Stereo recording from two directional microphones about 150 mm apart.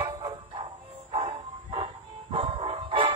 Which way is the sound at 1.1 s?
40° right (ahead or behind).